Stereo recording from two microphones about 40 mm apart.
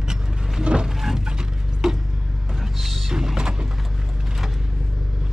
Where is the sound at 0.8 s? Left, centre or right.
Centre.